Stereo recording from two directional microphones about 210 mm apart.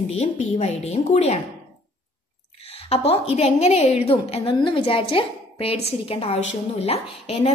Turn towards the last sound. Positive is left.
turn(degrees=30)  # may be behind; listen again after turning